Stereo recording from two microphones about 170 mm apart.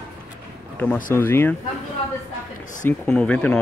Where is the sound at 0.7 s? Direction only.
10° left (ahead or behind).